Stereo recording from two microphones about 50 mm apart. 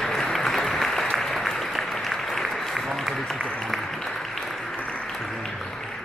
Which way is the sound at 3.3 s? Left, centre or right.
Centre.